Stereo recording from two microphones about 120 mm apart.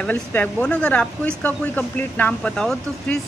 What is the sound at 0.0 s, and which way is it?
Speech, 15° left (ahead or behind).